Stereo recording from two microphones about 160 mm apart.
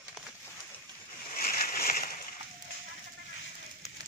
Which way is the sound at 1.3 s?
65° left (ahead or behind).